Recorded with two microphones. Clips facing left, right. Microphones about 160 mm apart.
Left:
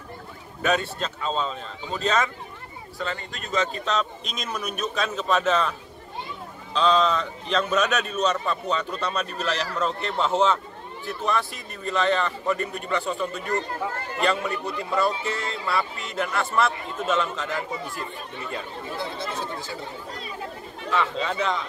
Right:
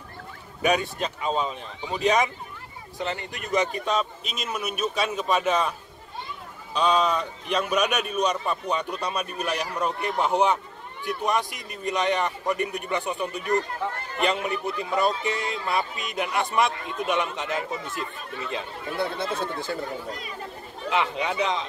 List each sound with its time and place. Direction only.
0.6 s a man's voice: 15° right (ahead or behind)
18.9 s speech: 60° right (ahead or behind)
20.9 s a man's voice: 15° right (ahead or behind)